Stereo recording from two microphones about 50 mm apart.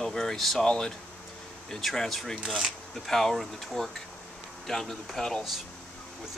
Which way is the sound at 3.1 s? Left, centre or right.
Centre.